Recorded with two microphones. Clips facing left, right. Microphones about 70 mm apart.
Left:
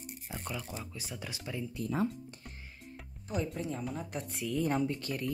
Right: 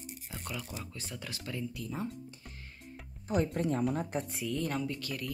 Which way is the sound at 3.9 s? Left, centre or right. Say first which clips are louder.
Right 5 dB; right.